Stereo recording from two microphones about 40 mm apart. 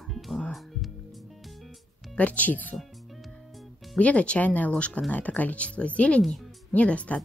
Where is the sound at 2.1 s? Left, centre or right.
Left.